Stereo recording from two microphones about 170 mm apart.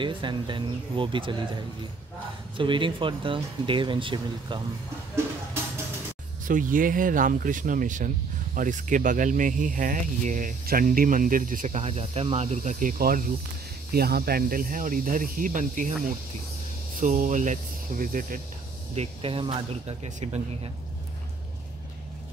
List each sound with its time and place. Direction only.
0.0 s speech: 30° right (ahead or behind)
6.4 s speech: 50° right (ahead or behind)
18.9 s speech: 35° right (ahead or behind)